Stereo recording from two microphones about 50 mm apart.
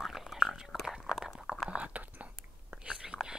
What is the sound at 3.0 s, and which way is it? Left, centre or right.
Biting, centre.